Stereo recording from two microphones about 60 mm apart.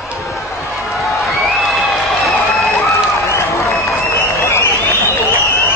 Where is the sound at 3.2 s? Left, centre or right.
Left.